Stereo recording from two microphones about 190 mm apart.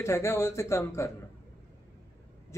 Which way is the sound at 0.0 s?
15° left (ahead or behind).